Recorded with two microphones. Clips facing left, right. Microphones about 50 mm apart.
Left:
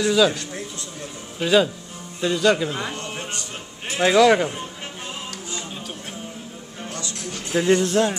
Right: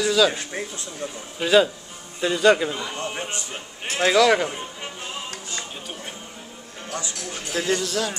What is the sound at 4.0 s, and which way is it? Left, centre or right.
Speech, centre.